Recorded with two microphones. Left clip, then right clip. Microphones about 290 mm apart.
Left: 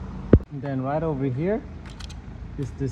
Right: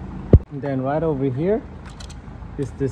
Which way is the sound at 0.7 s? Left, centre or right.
Centre.